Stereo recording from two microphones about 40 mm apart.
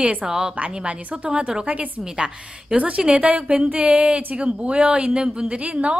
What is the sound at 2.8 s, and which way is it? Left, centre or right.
A woman's voice, right.